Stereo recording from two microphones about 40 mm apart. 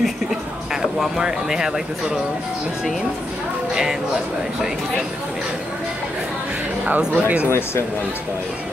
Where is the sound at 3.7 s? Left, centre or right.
Centre.